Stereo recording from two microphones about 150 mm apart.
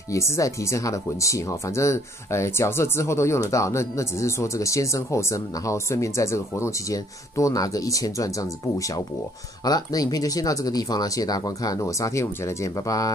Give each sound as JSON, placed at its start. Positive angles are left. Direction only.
{"t": 0.1, "sound": "speech", "side_deg": 20}